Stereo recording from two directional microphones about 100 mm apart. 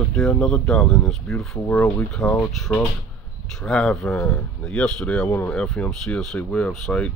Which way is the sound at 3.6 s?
5° left (ahead or behind).